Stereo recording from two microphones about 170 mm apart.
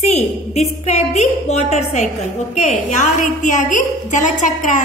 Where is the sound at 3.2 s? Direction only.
45° left (ahead or behind).